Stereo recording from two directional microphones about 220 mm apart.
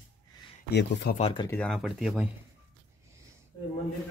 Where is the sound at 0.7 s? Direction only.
50° left (ahead or behind).